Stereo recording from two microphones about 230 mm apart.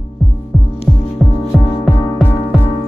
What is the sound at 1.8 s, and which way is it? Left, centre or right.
Music, centre.